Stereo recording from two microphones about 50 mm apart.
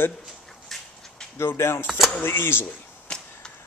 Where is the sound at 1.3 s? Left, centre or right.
Left.